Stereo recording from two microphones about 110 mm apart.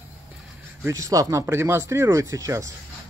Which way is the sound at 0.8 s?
30° right (ahead or behind).